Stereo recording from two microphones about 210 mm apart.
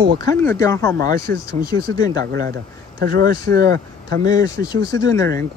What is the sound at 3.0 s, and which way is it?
Speech, 45° right (ahead or behind).